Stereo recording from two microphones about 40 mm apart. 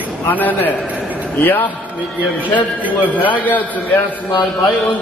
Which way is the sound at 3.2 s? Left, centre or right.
Left.